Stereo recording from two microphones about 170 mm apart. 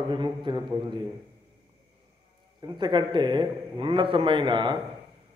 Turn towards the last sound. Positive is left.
turn(degrees=-30)  # may be behind; listen again after turning